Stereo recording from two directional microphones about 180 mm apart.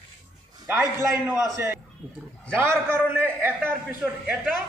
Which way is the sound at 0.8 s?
15° right (ahead or behind).